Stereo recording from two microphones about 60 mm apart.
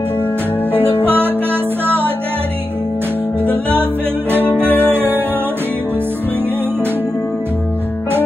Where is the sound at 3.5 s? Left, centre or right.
Right.